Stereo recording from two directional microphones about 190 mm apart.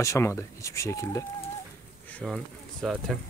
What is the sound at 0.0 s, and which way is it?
Speech, 15° left (ahead or behind).